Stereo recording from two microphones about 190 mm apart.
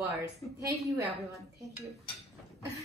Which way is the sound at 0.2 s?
15° right (ahead or behind).